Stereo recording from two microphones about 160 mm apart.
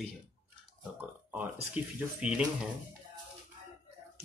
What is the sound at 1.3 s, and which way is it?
Speech, 10° right (ahead or behind).